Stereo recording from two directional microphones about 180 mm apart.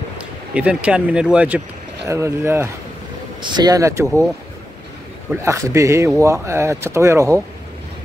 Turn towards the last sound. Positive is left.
turn(degrees=-15)  # may be behind; listen again after turning